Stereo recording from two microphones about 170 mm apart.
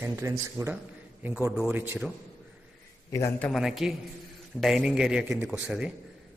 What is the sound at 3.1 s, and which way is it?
Speech, 15° left (ahead or behind).